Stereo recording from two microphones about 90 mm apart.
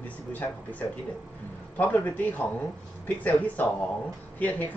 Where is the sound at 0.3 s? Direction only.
20° left (ahead or behind).